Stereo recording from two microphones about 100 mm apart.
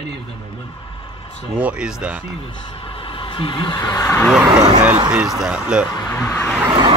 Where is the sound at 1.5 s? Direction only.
10° right (ahead or behind).